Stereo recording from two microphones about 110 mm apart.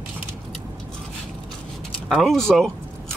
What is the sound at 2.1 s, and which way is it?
Speech, 5° left (ahead or behind).